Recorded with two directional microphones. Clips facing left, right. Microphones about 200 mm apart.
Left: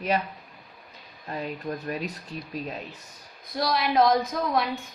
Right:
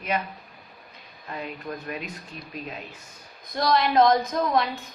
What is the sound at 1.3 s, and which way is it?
Speech, 35° left (ahead or behind).